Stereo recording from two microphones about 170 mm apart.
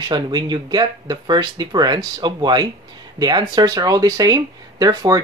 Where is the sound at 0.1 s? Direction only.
25° right (ahead or behind).